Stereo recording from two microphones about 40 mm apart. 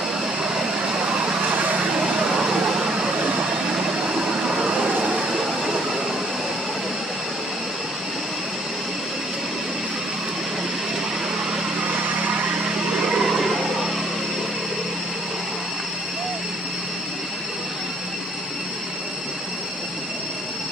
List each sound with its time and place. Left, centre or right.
1.0 s vehicle: right
1.5 s vehicle: right
2.1 s vehicle: centre
4.5 s vehicle: centre
12.9 s a sound: centre
13.2 s a sound: centre